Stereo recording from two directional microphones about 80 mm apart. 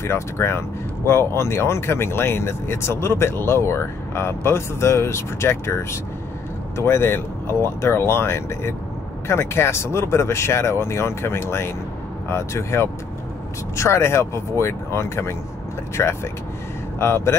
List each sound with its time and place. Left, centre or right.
0.0 s speech: left